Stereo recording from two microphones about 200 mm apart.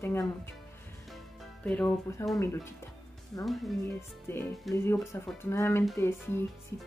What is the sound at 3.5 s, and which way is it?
Speech, centre (ahead or behind).